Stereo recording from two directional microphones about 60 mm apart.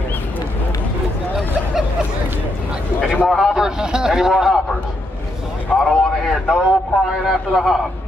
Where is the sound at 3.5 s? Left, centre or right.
Centre.